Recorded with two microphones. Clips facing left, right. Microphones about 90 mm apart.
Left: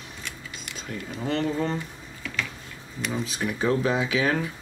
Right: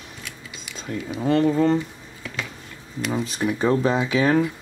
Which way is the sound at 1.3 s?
30° right (ahead or behind).